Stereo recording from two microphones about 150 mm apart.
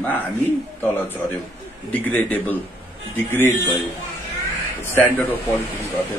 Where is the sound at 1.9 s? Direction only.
10° left (ahead or behind).